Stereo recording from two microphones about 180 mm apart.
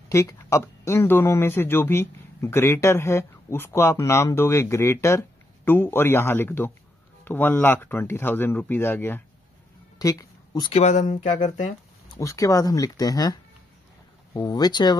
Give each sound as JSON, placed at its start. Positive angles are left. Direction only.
{"t": 0.1, "sound": "speech", "side_deg": 15}
{"t": 9.9, "sound": "a sound", "side_deg": 20}
{"t": 10.7, "sound": "speech", "side_deg": 40}
{"t": 12.2, "sound": "speech", "side_deg": 15}